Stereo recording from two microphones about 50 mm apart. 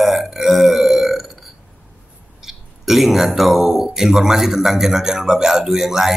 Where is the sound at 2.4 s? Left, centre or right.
Centre.